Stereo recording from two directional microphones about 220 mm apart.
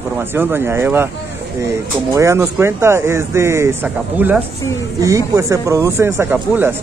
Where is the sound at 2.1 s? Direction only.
15° right (ahead or behind).